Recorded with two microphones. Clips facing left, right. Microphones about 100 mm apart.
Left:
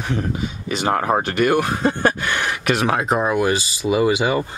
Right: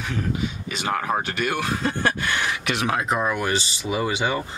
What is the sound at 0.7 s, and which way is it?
Speech, 45° left (ahead or behind).